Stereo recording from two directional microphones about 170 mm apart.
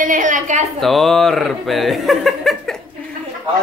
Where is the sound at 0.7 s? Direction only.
Centre (ahead or behind).